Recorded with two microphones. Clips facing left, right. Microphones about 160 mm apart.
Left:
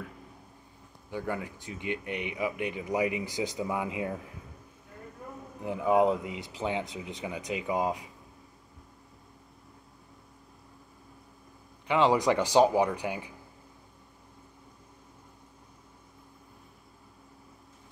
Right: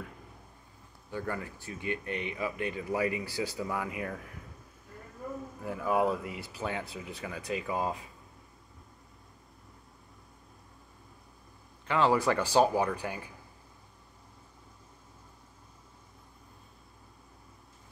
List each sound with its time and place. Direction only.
1.1 s speech: 15° left (ahead or behind)
5.6 s speech: 20° left (ahead or behind)
11.9 s speech: 15° left (ahead or behind)